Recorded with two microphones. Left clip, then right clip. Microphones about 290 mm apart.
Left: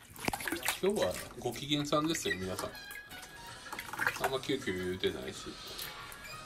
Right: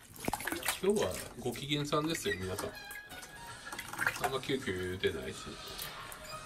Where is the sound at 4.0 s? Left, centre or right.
Centre.